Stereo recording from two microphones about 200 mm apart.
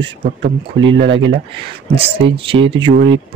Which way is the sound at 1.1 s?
25° right (ahead or behind).